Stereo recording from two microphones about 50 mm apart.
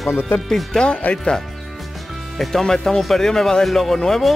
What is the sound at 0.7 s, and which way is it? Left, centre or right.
Speech, centre.